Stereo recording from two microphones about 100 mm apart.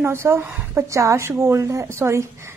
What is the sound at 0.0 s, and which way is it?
A woman's voice, 25° right (ahead or behind).